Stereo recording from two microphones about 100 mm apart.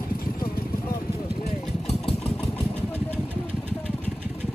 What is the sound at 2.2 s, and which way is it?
Engine, 15° left (ahead or behind).